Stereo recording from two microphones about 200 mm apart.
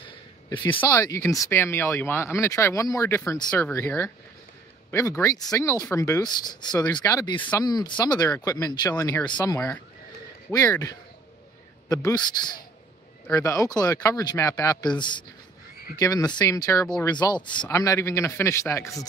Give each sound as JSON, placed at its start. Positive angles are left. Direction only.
{"t": 0.7, "sound": "a man's voice", "side_deg": 10}
{"t": 16.8, "sound": "speech", "side_deg": 5}
{"t": 17.2, "sound": "speech", "side_deg": 20}